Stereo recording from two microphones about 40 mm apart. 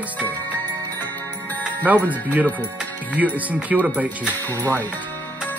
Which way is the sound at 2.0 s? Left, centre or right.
Left.